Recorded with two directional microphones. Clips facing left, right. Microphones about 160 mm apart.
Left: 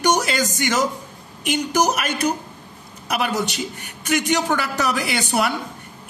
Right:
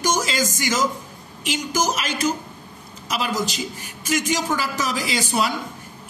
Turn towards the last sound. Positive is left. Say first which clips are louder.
# left 1 dB
turn(degrees=65)  # may be behind; listen again after turning